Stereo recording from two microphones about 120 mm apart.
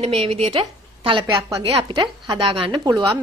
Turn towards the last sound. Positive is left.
turn(degrees=-25)  # may be behind; listen again after turning